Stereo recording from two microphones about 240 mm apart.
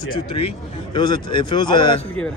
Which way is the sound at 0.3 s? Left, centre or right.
Left.